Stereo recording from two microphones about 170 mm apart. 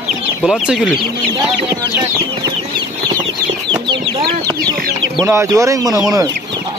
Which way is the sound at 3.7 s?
30° right (ahead or behind).